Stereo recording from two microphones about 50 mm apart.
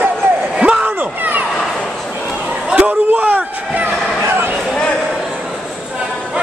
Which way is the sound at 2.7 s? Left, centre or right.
Right.